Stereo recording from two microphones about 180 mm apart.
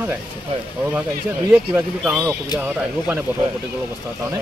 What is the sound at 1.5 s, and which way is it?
Speech, 5° right (ahead or behind).